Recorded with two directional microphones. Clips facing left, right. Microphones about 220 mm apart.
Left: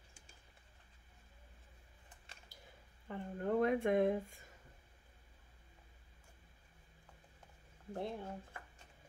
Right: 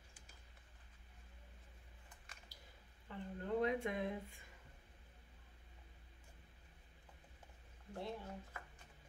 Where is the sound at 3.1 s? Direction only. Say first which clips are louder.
Left 5 dB; 55° left (ahead or behind).